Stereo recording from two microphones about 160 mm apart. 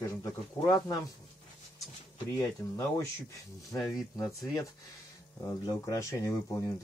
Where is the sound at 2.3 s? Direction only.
20° left (ahead or behind).